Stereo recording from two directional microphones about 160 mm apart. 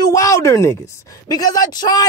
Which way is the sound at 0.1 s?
20° left (ahead or behind).